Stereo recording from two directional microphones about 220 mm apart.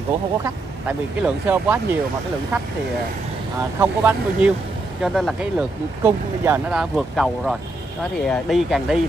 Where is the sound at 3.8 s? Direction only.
10° right (ahead or behind).